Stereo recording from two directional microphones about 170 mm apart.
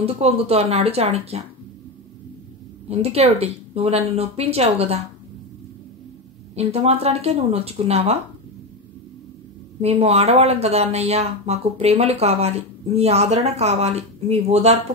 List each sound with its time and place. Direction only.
0.0 s speech: 35° right (ahead or behind)
2.9 s speech: 35° right (ahead or behind)
6.5 s speech: 40° right (ahead or behind)
9.8 s speech: 35° right (ahead or behind)